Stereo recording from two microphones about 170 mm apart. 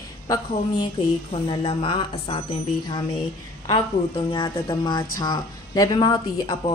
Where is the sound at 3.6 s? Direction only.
30° left (ahead or behind).